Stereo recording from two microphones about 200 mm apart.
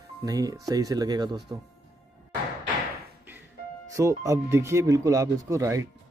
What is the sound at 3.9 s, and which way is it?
Speech, 15° right (ahead or behind).